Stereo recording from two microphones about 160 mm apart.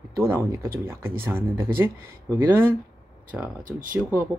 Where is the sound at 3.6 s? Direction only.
55° right (ahead or behind).